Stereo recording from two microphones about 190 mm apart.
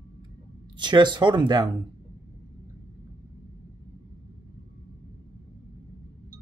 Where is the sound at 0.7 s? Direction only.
25° right (ahead or behind).